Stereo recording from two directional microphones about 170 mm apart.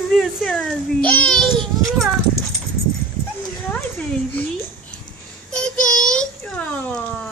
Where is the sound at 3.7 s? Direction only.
10° left (ahead or behind).